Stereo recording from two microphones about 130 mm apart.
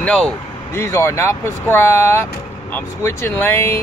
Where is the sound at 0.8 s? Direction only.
20° left (ahead or behind).